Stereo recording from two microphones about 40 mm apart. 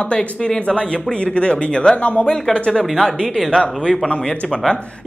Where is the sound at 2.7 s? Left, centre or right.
Centre.